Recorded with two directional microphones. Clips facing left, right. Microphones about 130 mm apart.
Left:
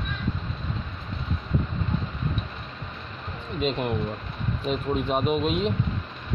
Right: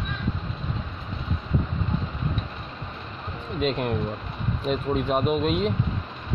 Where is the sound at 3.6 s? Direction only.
Centre (ahead or behind).